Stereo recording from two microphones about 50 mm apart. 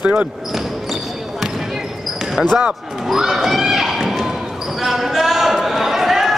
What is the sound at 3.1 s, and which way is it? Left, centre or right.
Clip-clop, centre.